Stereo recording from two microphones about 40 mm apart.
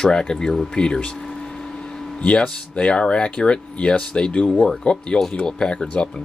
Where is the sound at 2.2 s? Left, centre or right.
Left.